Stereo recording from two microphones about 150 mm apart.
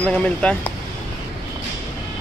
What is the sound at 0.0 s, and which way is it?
Speech, 10° left (ahead or behind).